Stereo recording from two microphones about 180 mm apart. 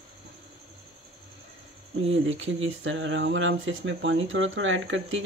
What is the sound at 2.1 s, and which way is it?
Speech, 90° right.